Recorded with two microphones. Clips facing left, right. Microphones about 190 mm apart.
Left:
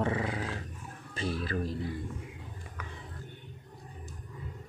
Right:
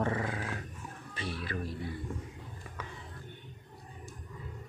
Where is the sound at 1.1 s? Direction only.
35° left (ahead or behind).